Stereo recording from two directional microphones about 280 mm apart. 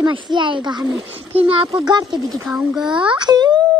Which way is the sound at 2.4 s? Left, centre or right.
Centre.